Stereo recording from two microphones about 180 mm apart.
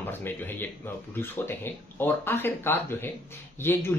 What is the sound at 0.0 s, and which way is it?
A man's voice, 10° left (ahead or behind).